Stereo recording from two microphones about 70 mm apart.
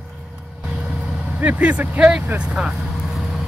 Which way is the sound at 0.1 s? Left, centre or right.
Centre.